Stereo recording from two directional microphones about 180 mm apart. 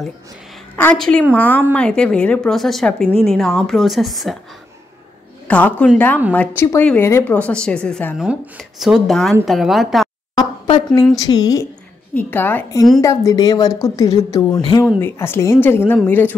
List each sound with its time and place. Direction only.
0.7 s speech: 5° left (ahead or behind)
5.5 s speech: 10° left (ahead or behind)
11.2 s speech: 20° left (ahead or behind)
12.1 s speech: 10° left (ahead or behind)
13.0 s speech: 15° left (ahead or behind)